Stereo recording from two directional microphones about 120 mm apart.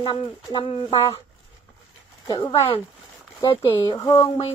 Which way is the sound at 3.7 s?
40° left (ahead or behind).